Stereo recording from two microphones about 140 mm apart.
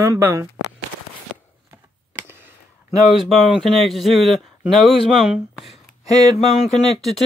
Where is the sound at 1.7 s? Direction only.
15° right (ahead or behind).